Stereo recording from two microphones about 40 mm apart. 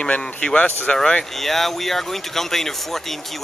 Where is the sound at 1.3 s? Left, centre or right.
Centre.